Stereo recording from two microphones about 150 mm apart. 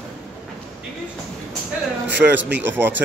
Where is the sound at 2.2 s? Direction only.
10° right (ahead or behind).